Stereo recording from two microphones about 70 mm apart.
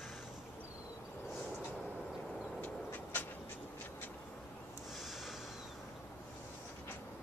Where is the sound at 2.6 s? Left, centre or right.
Left.